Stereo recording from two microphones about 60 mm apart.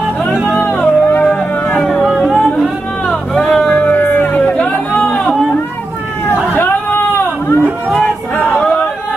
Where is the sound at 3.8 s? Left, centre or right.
Left.